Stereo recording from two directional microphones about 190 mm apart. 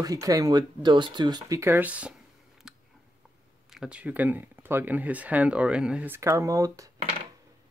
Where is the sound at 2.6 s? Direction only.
5° right (ahead or behind).